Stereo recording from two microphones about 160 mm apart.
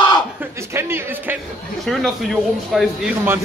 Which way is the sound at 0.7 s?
15° right (ahead or behind).